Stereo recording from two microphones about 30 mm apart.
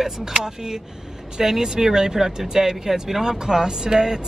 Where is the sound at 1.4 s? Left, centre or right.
Centre.